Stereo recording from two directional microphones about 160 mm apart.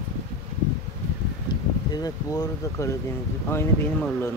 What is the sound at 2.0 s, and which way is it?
Speech, 25° left (ahead or behind).